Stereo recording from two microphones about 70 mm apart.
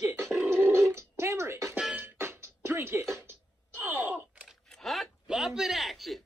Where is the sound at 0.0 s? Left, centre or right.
Right.